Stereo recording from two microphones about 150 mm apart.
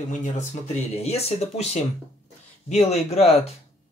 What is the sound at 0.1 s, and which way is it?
Speech, 55° left (ahead or behind).